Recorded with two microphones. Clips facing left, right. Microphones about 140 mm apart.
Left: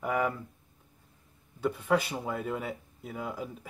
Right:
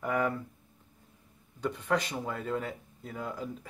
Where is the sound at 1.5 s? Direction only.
5° left (ahead or behind).